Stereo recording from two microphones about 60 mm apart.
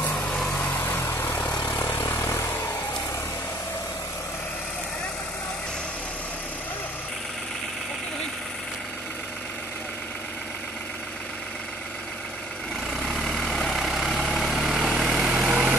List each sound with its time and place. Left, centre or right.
0.0 s vehicle: left
0.6 s vehicle: left
12.9 s vehicle: centre
15.3 s vehicle: centre